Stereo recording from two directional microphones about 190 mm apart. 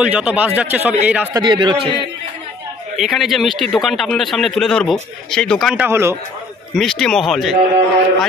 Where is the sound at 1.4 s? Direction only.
25° right (ahead or behind).